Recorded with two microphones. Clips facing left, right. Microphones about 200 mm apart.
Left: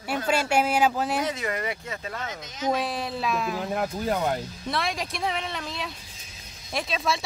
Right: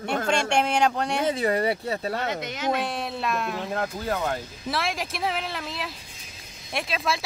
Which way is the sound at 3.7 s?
15° left (ahead or behind).